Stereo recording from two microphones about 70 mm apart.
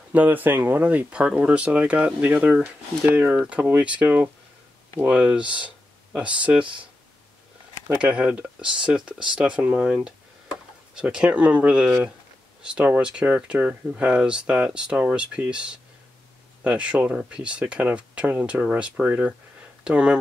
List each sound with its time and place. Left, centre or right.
0.1 s speech: right
8.0 s speech: centre
11.0 s speech: centre